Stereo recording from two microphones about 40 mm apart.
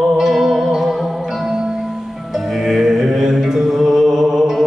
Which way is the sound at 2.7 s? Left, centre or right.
Centre.